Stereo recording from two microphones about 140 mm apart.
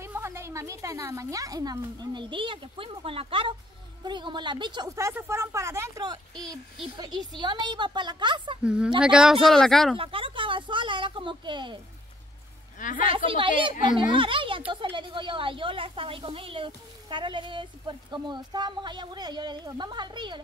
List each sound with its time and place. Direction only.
0.0 s speech: 20° right (ahead or behind)
4.8 s speech: 20° right (ahead or behind)
6.3 s speech: 5° left (ahead or behind)
7.3 s speech: 35° right (ahead or behind)
8.6 s speech: 5° right (ahead or behind)
9.9 s speech: 40° right (ahead or behind)
12.7 s a woman's voice: 70° left (ahead or behind)
13.0 s speech: 40° right (ahead or behind)